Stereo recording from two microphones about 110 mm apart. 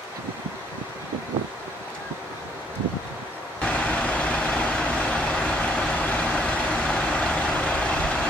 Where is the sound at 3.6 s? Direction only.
10° left (ahead or behind).